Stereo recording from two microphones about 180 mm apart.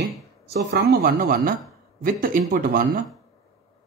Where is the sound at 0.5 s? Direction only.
55° right (ahead or behind).